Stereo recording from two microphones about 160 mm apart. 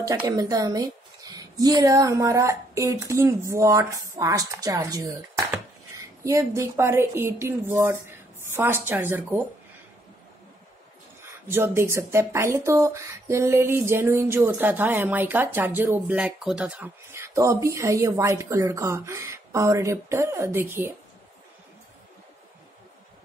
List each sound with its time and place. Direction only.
0.3 s speech: 20° right (ahead or behind)
11.4 s speech: 15° right (ahead or behind)